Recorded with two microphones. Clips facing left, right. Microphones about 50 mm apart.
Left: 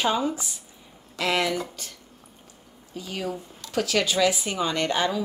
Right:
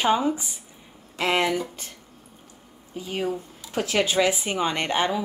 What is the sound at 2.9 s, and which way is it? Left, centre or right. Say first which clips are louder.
Speech: right 3 dB; right.